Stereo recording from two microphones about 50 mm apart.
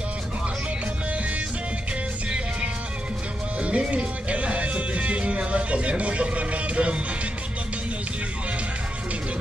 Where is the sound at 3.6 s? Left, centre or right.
Right.